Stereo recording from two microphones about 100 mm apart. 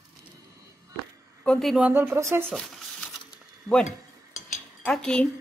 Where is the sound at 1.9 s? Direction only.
20° right (ahead or behind).